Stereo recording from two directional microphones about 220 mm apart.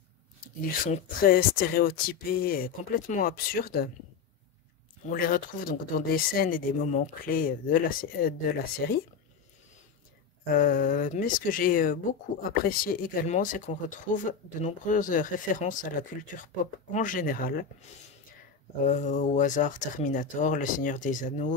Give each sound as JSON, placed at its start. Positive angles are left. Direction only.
{"t": 0.7, "sound": "speech", "side_deg": 40}
{"t": 5.1, "sound": "speech", "side_deg": 40}
{"t": 10.4, "sound": "speech", "side_deg": 40}
{"t": 16.9, "sound": "speech", "side_deg": 35}
{"t": 18.9, "sound": "speech", "side_deg": 35}